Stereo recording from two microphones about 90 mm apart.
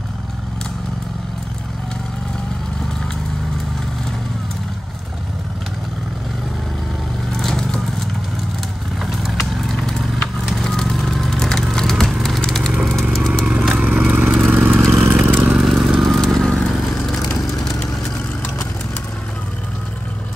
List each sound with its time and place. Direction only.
7.3 s vehicle: 5° left (ahead or behind)
10.4 s a sound: centre (ahead or behind)
13.5 s motorcycle: 5° right (ahead or behind)
13.8 s vehicle: 15° right (ahead or behind)
15.5 s vehicle: 5° right (ahead or behind)